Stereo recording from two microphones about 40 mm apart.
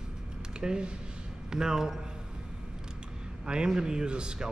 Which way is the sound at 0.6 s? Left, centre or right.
Right.